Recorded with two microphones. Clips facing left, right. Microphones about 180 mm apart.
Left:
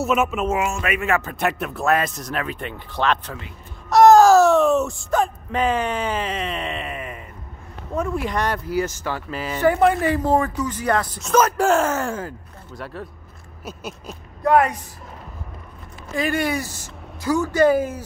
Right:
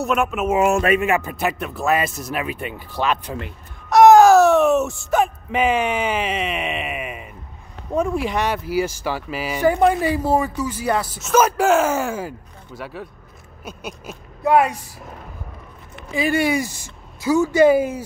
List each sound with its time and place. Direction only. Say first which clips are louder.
0.0 s speech: even; centre (ahead or behind)
0.7 s speech: right 7 dB; 30° right (ahead or behind)
1.0 s speech: right 2 dB; 15° right (ahead or behind)
1.3 s speech: even; centre (ahead or behind)
3.9 s baby cry: right 1 dB; centre (ahead or behind)
4.5 s a sound: right 1 dB; 20° right (ahead or behind)
5.5 s speech: right 2 dB; 10° right (ahead or behind)
16.1 s speech: right 3 dB; 10° right (ahead or behind)